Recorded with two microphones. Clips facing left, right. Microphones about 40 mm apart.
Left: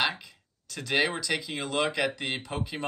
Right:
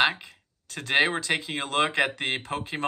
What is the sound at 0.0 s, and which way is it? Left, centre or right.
Speech, right.